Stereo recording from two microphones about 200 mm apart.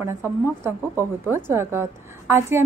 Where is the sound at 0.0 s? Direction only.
15° right (ahead or behind).